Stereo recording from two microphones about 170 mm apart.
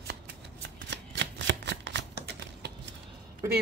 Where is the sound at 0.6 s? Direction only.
90° right.